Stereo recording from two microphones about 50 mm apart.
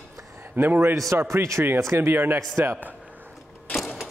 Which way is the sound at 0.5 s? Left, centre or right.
Right.